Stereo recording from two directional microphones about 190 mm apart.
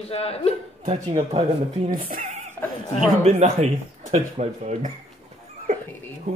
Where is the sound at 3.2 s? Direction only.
35° right (ahead or behind).